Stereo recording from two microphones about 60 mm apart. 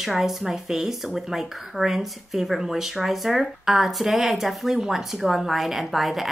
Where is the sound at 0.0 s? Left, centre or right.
Centre.